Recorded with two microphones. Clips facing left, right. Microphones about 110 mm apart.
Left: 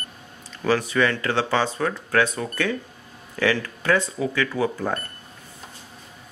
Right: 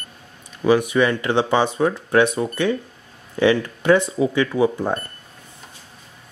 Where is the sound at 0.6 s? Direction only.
15° right (ahead or behind).